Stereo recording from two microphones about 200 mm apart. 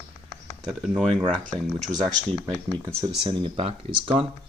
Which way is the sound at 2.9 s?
25° right (ahead or behind).